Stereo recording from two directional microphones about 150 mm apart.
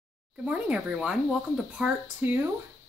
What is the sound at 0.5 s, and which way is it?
Speech, 5° right (ahead or behind).